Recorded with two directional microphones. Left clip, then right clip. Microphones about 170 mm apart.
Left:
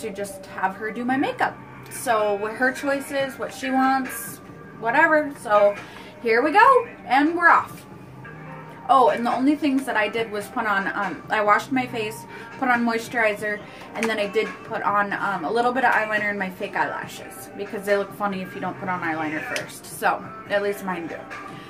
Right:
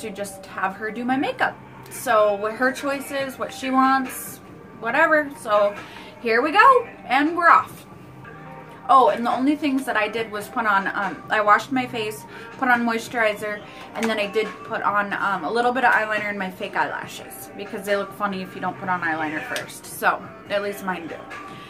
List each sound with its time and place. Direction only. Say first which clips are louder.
0.0 s a woman's voice: left 1 dB; 10° left (ahead or behind)
8.8 s a woman's voice: right 1 dB; 5° left (ahead or behind)